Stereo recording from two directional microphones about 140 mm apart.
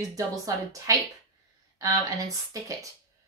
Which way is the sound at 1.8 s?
25° right (ahead or behind).